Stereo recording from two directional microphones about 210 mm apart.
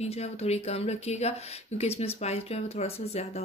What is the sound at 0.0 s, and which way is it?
Speech, 30° left (ahead or behind).